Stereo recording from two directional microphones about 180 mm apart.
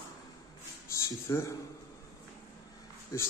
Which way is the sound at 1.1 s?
15° left (ahead or behind).